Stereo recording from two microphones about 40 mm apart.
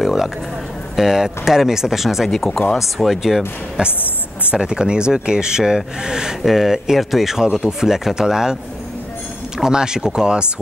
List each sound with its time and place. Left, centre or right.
0.0 s a sound: centre
0.9 s speech: centre
2.3 s speech: centre
3.8 s speech: right
6.4 s speech: centre
9.6 s speech: centre